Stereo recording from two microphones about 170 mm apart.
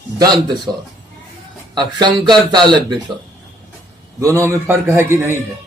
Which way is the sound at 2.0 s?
25° right (ahead or behind).